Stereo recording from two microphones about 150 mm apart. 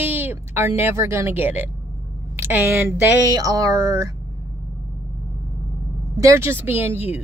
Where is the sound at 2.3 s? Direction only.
15° right (ahead or behind).